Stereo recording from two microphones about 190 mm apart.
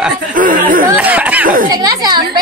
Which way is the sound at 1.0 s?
10° right (ahead or behind).